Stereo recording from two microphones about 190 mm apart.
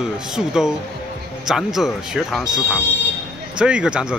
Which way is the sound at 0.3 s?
5° right (ahead or behind).